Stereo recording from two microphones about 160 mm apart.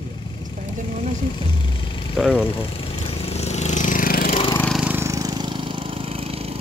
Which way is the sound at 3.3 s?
40° left (ahead or behind).